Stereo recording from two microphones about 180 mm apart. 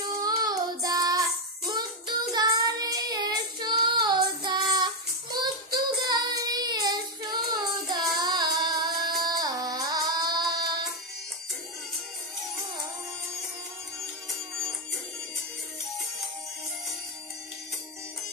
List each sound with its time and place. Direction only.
0.0 s child singing: 20° right (ahead or behind)
9.2 s carnatic music: 20° right (ahead or behind)